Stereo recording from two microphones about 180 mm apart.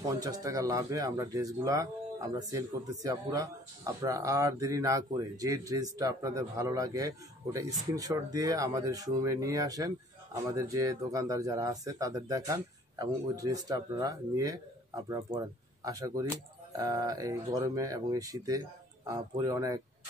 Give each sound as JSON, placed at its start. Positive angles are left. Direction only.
{"t": 0.2, "sound": "speech", "side_deg": -20}